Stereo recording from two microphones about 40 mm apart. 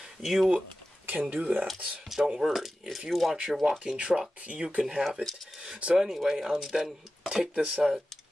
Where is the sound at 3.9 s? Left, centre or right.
Right; by 6.9 s centre.